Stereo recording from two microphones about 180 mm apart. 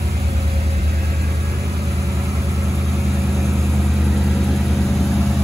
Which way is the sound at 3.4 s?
15° right (ahead or behind).